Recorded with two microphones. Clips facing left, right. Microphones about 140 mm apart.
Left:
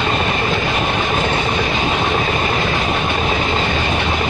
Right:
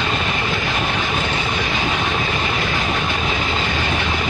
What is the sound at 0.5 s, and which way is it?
Train, 25° left (ahead or behind).